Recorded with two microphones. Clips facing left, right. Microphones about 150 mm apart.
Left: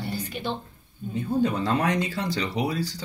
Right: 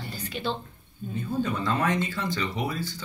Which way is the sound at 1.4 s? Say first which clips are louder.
Left 2 dB; 35° left (ahead or behind).